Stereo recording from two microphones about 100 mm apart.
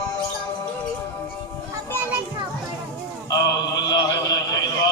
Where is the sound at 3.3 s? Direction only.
40° left (ahead or behind).